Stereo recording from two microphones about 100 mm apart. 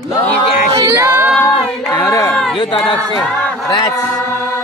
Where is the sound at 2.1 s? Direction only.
30° left (ahead or behind).